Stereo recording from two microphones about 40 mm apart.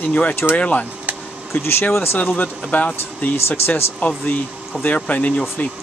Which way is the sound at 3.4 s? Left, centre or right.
Left.